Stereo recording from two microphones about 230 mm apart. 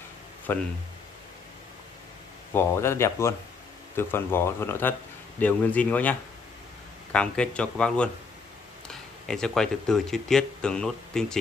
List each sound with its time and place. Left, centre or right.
0.5 s speech: centre
2.5 s speech: centre